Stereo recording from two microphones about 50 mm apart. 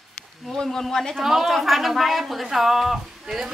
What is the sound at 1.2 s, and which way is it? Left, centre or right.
Speech, centre.